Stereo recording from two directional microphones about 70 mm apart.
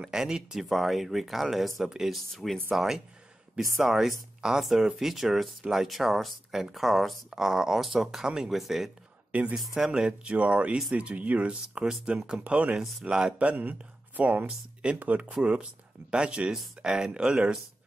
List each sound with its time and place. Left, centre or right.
0.0 s speech: centre
9.3 s speech: centre